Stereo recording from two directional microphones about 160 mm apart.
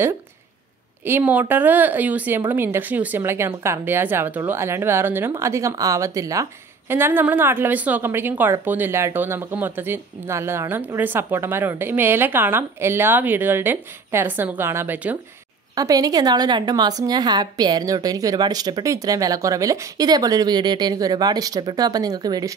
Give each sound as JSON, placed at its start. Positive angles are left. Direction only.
{"t": 1.0, "sound": "a woman's voice", "side_deg": -10}